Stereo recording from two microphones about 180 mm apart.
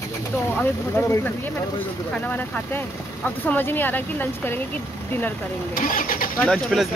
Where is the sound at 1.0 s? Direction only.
15° left (ahead or behind).